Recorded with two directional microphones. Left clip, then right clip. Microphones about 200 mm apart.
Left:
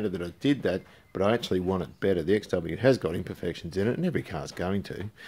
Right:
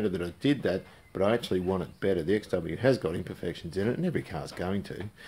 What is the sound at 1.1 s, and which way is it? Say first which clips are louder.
Speech: left 1 dB; 50° left (ahead or behind).